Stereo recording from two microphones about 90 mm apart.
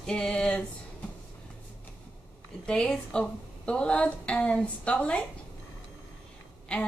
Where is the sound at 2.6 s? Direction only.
10° left (ahead or behind).